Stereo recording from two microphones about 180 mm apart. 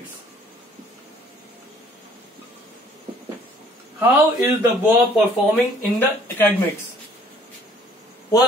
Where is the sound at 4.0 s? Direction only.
10° right (ahead or behind).